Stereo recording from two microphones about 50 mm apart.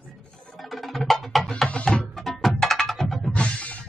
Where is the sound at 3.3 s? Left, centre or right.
Left.